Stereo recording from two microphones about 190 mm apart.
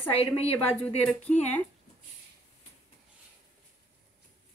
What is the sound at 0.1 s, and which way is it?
Speech, 30° left (ahead or behind).